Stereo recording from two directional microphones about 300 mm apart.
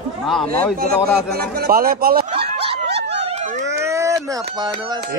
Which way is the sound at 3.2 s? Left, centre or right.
Right.